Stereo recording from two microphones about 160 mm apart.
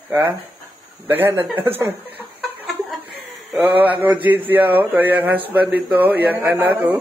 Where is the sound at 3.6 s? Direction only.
10° right (ahead or behind).